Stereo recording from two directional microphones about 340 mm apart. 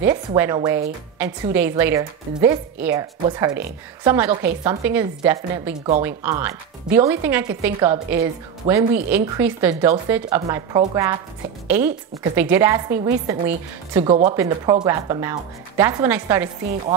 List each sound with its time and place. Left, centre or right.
0.0 s a woman's voice: centre
14.0 s a woman's voice: centre